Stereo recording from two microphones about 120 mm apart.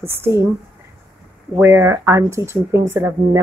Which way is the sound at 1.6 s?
20° right (ahead or behind).